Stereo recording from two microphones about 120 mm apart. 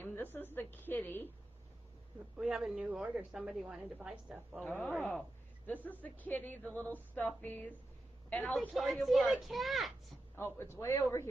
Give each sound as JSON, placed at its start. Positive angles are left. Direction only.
{"t": 0.0, "sound": "a woman's voice", "side_deg": 15}
{"t": 2.3, "sound": "a woman's voice", "side_deg": -5}
{"t": 4.6, "sound": "a man's voice", "side_deg": 10}
{"t": 8.5, "sound": "speech", "side_deg": 0}
{"t": 10.3, "sound": "a man's voice", "side_deg": 20}